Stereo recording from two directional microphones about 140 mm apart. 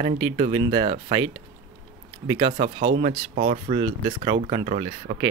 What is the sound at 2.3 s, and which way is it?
Speech, 40° right (ahead or behind).